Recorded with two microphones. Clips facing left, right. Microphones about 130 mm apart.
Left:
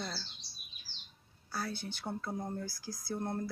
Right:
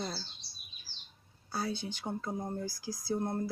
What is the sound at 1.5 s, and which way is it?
Speech, 20° right (ahead or behind).